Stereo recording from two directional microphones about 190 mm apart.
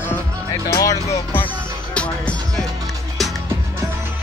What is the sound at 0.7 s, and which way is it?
Speech, 15° left (ahead or behind).